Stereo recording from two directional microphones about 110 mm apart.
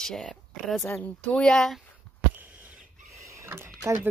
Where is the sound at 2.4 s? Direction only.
15° right (ahead or behind).